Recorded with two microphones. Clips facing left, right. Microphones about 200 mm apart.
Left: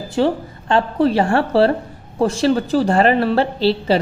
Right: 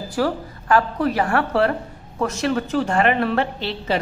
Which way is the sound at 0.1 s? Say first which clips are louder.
Left 5 dB; 25° left (ahead or behind).